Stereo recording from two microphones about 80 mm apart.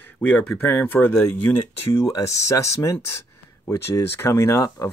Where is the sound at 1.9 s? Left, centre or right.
Left.